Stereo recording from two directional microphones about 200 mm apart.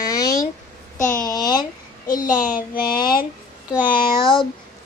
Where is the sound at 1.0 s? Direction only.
40° left (ahead or behind).